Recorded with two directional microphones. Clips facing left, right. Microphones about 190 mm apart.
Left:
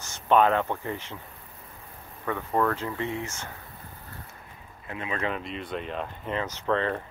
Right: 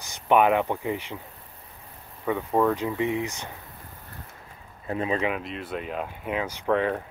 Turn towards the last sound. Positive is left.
turn(degrees=-10)  # may be behind; listen again after turning